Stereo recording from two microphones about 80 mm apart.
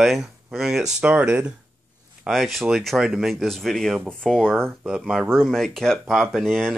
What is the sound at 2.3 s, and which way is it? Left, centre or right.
Speech, centre.